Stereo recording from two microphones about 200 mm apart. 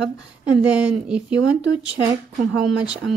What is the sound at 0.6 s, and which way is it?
A woman's voice, 5° right (ahead or behind).